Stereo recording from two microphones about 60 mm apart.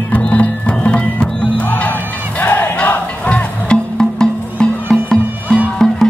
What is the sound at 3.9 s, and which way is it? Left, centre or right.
Music, centre.